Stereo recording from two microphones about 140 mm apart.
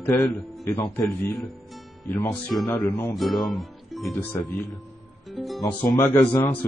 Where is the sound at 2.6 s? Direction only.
15° left (ahead or behind).